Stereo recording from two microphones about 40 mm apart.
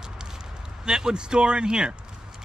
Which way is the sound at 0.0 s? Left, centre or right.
Centre.